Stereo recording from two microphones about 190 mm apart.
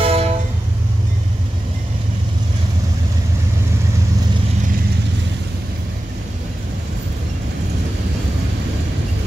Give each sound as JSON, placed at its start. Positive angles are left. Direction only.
{"t": 0.0, "sound": "train", "side_deg": -30}